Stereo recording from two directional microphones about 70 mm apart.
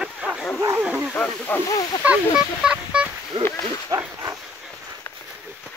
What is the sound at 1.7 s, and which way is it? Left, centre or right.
Speech, left.